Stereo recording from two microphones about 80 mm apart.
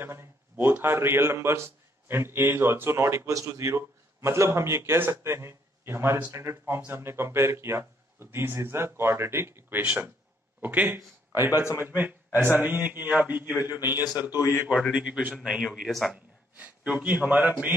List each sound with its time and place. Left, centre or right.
0.0 s a man's voice: right
14.3 s a man's voice: left
14.9 s a man's voice: centre
15.9 s a man's voice: centre
16.5 s a man's voice: centre